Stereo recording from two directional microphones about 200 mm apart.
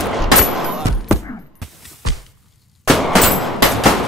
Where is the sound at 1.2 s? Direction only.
15° left (ahead or behind).